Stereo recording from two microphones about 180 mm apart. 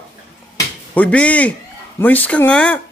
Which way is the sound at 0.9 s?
5° left (ahead or behind).